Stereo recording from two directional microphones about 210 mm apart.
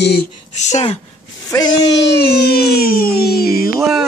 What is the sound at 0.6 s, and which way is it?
Speech, 30° left (ahead or behind).